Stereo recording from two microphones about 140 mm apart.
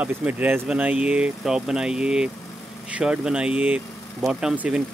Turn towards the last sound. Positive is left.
turn(degrees=-10)  # may be behind; listen again after turning